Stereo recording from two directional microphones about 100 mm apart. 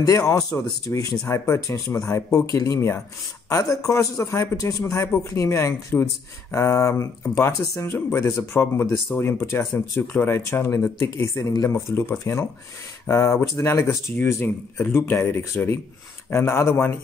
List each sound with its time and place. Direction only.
0.0 s a man's voice: 35° left (ahead or behind)